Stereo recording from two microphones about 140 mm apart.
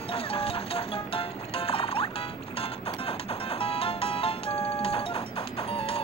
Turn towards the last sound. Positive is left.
turn(degrees=40)  # may be behind; listen again after turning